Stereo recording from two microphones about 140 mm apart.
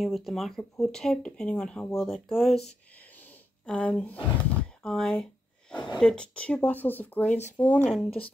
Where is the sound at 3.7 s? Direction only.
10° left (ahead or behind).